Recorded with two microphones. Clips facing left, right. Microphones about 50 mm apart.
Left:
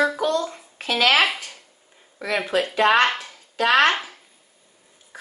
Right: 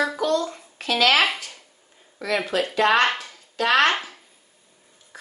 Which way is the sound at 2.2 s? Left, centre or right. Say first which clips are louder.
Left 1 dB; centre.